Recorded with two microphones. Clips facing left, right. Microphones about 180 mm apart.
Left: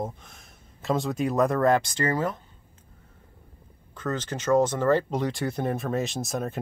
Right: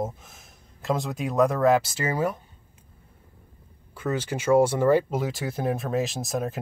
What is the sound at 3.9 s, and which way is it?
Speech, 10° right (ahead or behind).